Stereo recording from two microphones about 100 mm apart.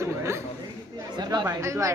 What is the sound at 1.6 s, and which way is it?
Speech, 30° right (ahead or behind).